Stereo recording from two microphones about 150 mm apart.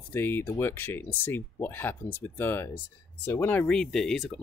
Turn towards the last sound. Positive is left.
turn(degrees=0)  # may be behind; listen again after turning